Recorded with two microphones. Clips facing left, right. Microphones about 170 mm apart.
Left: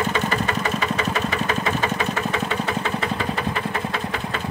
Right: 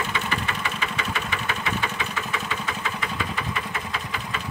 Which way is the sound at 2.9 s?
60° left (ahead or behind).